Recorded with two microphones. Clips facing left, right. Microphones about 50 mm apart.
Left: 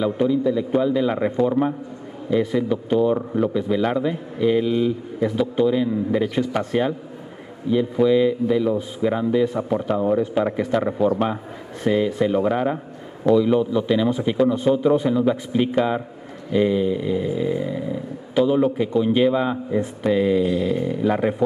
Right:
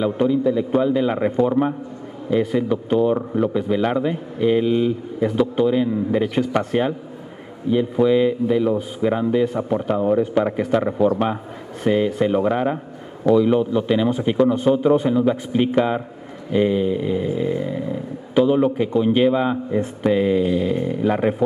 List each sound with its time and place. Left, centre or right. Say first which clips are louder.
0.0 s a man's voice: right 1 dB; centre
5.9 s a man's voice: right 1 dB; centre